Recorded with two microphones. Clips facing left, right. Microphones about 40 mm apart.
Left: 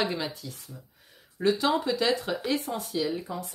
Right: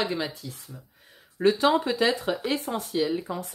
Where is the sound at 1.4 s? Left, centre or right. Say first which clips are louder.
Right 3 dB; right.